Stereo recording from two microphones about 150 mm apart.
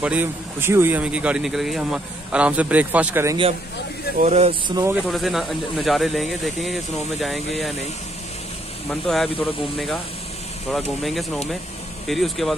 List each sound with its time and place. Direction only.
0.0 s a man's voice: 10° right (ahead or behind)
4.2 s speech: 45° right (ahead or behind)
4.6 s speech: 25° right (ahead or behind)
5.0 s speech: centre (ahead or behind)
9.0 s speech: 5° left (ahead or behind)
12.1 s speech: centre (ahead or behind)